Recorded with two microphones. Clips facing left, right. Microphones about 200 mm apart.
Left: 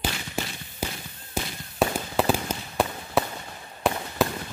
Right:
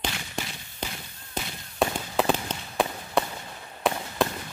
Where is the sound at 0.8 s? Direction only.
5° left (ahead or behind).